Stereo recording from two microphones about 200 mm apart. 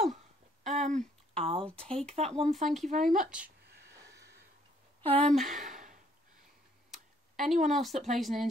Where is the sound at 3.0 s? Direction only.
5° right (ahead or behind).